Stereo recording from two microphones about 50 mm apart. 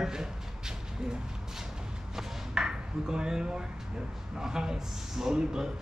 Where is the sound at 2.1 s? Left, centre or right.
Centre.